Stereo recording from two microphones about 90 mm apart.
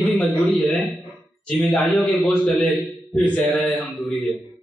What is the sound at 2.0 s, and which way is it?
Mantra, 15° left (ahead or behind).